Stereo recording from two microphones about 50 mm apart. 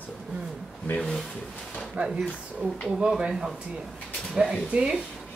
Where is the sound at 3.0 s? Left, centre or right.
Centre.